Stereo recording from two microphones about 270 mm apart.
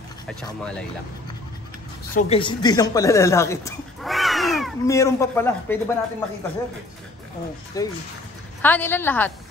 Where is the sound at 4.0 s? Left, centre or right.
Centre.